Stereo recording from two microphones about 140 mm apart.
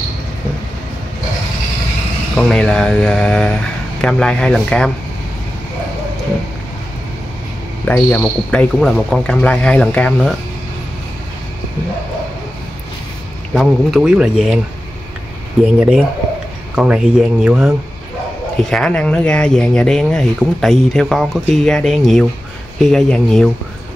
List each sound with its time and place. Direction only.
2.3 s speech: 5° left (ahead or behind)
7.9 s speech: 10° left (ahead or behind)
13.6 s speech: centre (ahead or behind)
16.7 s speech: 5° right (ahead or behind)